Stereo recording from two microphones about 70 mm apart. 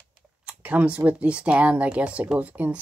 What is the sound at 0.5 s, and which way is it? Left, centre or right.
Speech, centre.